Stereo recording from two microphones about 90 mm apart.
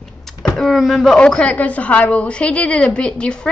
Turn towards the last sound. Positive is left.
turn(degrees=10)  # may be behind; listen again after turning